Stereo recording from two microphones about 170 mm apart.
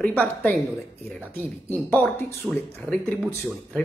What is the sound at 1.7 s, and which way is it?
A woman's voice, 10° left (ahead or behind).